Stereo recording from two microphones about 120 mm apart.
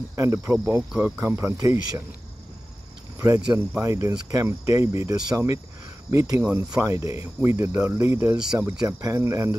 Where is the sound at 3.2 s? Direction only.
25° right (ahead or behind).